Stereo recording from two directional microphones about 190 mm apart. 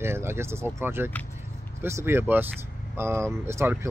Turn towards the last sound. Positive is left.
turn(degrees=-15)  # may be behind; listen again after turning